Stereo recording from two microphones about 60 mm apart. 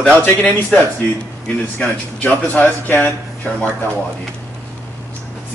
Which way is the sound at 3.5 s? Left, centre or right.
Left.